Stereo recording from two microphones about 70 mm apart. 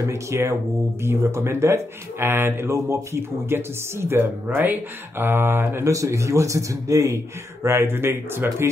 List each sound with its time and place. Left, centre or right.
0.0 s a man's voice: right
5.9 s a man's voice: right
7.6 s speech: right